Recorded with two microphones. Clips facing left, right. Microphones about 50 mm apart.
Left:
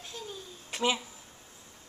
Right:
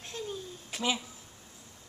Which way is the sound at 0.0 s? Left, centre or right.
Right.